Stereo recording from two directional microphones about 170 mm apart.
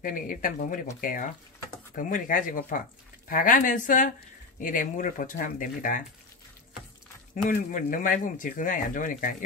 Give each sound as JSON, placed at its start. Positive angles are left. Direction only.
{"t": 0.0, "sound": "speech", "side_deg": 55}
{"t": 7.4, "sound": "speech", "side_deg": 50}